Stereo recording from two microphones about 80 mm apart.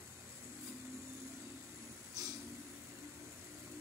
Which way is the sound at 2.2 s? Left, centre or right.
Right.